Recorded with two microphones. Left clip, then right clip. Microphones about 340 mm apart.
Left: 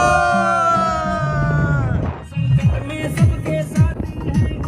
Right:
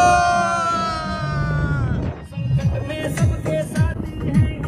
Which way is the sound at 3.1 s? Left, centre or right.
Right.